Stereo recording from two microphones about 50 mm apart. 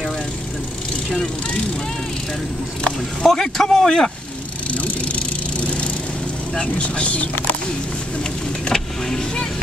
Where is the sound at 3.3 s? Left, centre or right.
Centre.